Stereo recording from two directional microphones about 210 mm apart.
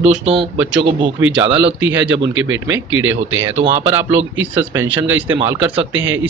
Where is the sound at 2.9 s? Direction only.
70° right (ahead or behind).